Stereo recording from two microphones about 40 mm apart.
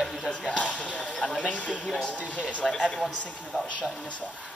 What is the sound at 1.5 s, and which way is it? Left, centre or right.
Speech, left.